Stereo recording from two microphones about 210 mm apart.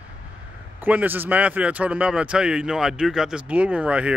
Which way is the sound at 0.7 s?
10° right (ahead or behind).